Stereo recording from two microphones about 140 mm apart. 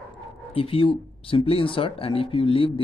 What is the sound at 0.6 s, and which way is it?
Speech, 40° left (ahead or behind).